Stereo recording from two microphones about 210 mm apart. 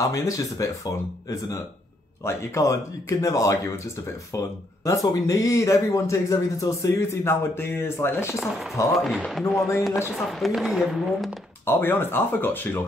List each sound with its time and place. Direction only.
0.0 s speech: 15° left (ahead or behind)
8.4 s speech: centre (ahead or behind)
11.6 s speech: 10° left (ahead or behind)